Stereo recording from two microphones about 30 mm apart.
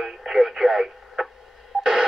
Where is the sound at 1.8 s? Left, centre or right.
Centre.